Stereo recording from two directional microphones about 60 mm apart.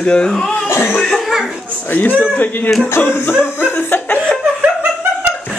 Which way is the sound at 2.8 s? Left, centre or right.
Left.